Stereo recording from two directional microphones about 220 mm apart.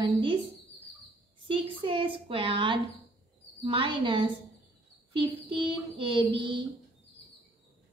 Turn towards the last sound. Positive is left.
turn(degrees=-20)  # may be behind; listen again after turning